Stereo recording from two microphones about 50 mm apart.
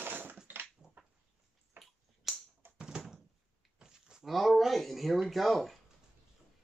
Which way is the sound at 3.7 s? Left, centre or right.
Centre.